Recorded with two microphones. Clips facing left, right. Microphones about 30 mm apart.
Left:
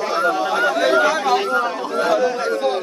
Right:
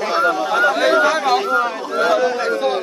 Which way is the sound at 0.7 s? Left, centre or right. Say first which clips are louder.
Right 2 dB; right.